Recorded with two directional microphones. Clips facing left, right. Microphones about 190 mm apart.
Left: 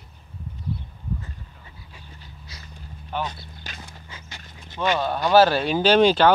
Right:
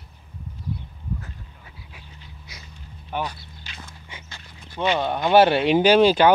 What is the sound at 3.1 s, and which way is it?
Speech, 15° right (ahead or behind).